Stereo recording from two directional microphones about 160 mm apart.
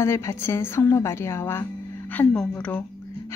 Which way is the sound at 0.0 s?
15° left (ahead or behind).